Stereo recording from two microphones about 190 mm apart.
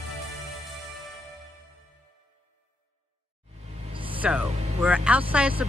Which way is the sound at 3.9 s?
30° right (ahead or behind).